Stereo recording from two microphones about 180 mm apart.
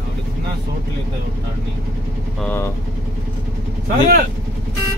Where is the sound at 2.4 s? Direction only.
10° left (ahead or behind).